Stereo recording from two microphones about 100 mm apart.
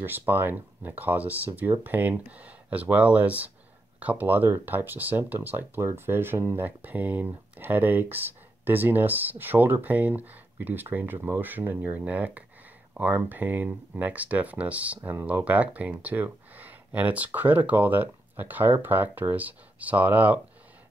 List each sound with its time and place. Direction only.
0.0 s speech: 20° right (ahead or behind)